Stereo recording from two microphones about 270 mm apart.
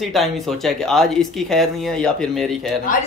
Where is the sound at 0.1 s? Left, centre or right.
Centre.